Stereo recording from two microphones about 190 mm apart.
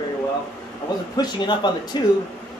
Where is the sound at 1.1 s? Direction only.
20° left (ahead or behind).